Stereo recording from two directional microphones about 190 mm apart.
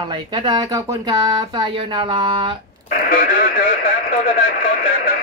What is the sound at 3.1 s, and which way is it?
A man's voice, 45° left (ahead or behind).